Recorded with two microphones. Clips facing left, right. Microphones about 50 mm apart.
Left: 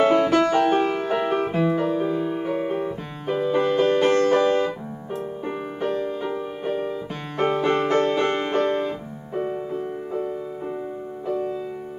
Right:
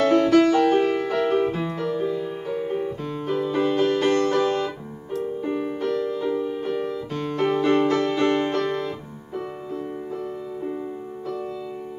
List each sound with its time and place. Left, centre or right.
0.0 s music: left